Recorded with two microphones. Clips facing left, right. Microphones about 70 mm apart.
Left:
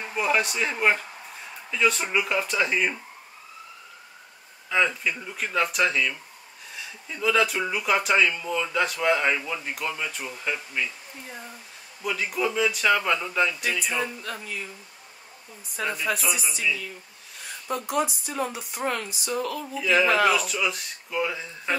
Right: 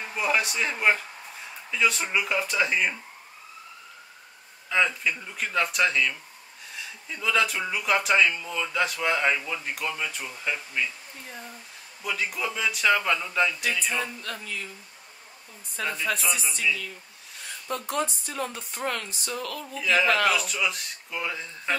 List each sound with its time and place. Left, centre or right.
0.0 s speech: centre
4.6 s speech: centre
15.7 s speech: centre